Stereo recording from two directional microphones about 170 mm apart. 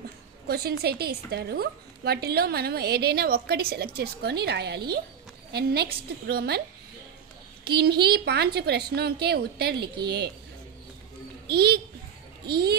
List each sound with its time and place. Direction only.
0.5 s a woman's voice: 65° right (ahead or behind)
7.6 s a woman's voice: 70° right (ahead or behind)
11.4 s a woman's voice: 70° right (ahead or behind)